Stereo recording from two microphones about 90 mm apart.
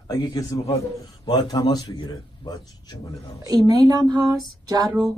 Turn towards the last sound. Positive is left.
turn(degrees=-45)  # may be behind; listen again after turning